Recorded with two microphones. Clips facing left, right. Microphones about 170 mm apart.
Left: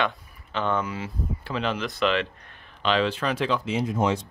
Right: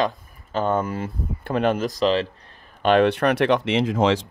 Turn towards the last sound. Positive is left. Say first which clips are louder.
# right 5 dB
turn(degrees=-90)